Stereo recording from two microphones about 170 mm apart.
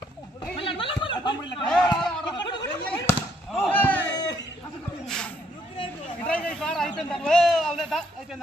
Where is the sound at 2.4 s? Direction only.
25° left (ahead or behind).